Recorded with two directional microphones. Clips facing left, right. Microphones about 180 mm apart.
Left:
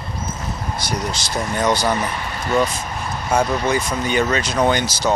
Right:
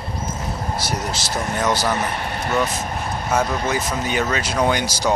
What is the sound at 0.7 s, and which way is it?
Speech, 5° right (ahead or behind).